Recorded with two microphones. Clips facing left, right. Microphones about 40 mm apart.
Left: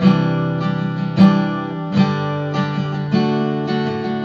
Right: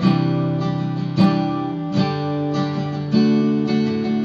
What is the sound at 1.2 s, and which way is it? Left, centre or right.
Music, left.